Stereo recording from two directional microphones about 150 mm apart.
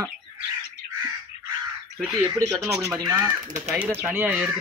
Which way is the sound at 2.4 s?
15° right (ahead or behind).